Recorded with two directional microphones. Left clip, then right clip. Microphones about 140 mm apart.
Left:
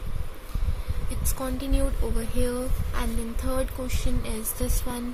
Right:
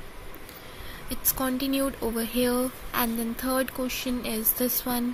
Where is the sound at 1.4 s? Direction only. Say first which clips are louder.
Right 3 dB; 25° right (ahead or behind).